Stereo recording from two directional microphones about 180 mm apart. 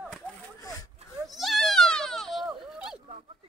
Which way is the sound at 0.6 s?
20° left (ahead or behind).